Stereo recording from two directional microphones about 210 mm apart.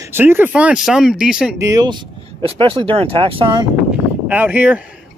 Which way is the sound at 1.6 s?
15° right (ahead or behind).